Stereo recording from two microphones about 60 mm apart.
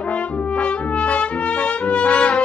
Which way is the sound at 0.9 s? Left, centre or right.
Left.